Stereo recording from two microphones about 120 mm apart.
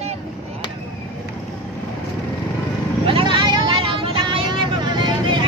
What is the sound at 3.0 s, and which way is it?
Vehicle, 45° right (ahead or behind).